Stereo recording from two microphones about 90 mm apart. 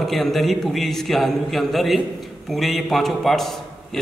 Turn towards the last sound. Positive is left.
turn(degrees=5)  # may be behind; listen again after turning